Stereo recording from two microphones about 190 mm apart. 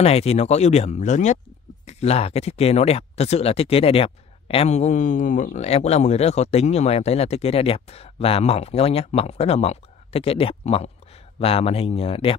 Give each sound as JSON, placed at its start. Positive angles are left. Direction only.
{"t": 0.0, "sound": "speech", "side_deg": 35}